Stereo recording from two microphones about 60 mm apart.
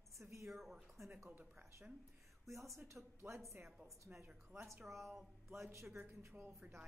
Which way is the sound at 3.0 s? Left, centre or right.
Centre.